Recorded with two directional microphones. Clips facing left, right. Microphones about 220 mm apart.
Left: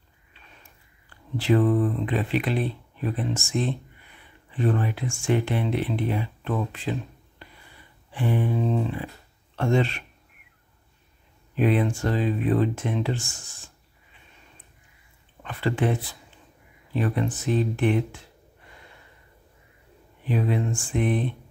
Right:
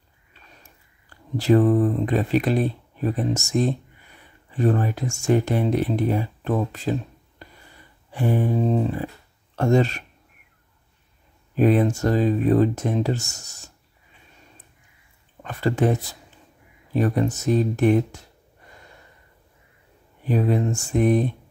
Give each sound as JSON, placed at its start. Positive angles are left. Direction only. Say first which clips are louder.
{"t": 1.3, "sound": "speech", "louder": "right 4 dB", "side_deg": -40}
{"t": 11.5, "sound": "speech", "louder": "right 4 dB", "side_deg": -40}
{"t": 15.4, "sound": "speech", "louder": "right 4 dB", "side_deg": -40}
{"t": 20.2, "sound": "speech", "louder": "right 4 dB", "side_deg": -40}